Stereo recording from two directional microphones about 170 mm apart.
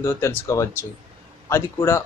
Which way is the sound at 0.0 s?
15° left (ahead or behind).